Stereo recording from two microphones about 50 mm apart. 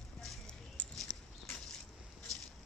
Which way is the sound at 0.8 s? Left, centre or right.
Centre.